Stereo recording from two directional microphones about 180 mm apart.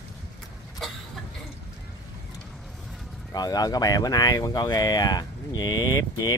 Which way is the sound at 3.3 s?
20° left (ahead or behind).